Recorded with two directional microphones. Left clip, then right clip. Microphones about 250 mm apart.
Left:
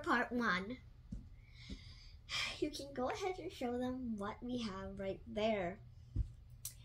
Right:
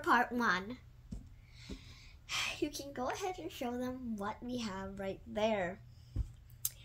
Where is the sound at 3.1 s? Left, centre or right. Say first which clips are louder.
Right 2 dB; right.